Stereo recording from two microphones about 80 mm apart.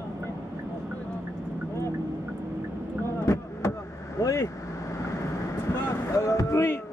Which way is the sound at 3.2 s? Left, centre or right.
Left.